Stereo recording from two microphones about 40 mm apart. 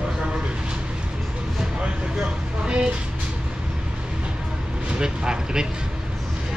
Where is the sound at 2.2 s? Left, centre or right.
Right.